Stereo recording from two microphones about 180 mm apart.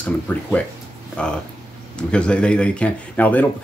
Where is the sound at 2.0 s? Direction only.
5° left (ahead or behind).